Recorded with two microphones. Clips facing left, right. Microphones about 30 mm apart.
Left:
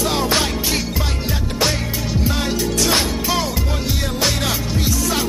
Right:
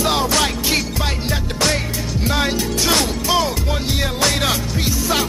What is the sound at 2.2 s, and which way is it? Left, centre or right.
Music, right.